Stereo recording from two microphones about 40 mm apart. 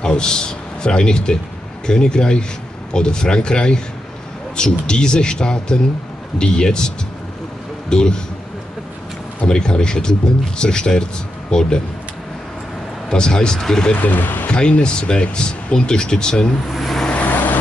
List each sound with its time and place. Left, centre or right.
0.0 s speech: centre
7.9 s speech: centre
9.5 s speech: centre
13.1 s speech: centre
14.0 s speech: left
14.5 s speech: left
16.6 s speech: centre
17.1 s vehicle: left